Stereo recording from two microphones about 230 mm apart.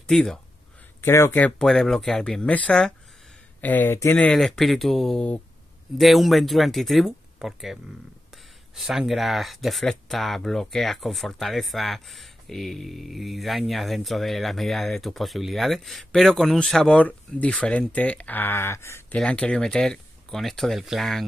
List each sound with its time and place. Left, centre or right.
0.0 s speech: centre